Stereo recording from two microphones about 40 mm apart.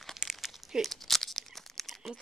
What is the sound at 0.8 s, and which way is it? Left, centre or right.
Crumpling, centre.